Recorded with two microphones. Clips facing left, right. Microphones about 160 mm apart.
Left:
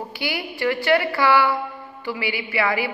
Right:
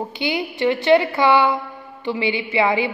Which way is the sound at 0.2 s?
20° right (ahead or behind).